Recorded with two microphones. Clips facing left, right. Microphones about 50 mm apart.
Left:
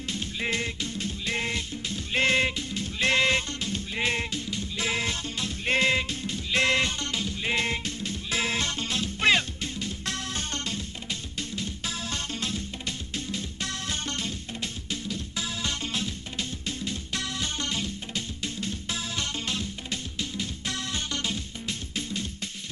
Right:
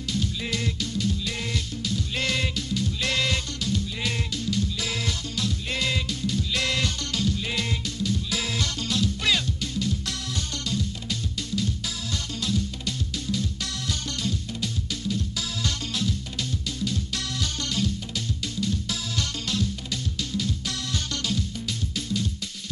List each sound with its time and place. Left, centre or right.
0.1 s music: left